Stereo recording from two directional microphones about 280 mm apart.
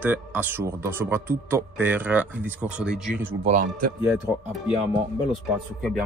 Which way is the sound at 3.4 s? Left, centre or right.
Right.